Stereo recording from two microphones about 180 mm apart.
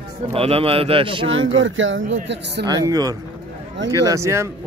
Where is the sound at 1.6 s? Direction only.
90° right.